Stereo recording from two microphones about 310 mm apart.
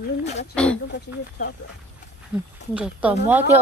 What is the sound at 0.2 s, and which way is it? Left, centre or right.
Speech, left.